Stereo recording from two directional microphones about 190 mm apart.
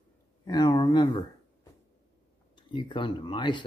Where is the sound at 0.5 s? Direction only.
25° left (ahead or behind).